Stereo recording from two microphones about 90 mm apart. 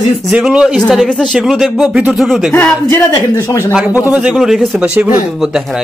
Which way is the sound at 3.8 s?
10° right (ahead or behind).